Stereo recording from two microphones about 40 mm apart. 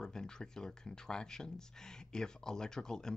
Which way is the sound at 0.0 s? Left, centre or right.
Centre.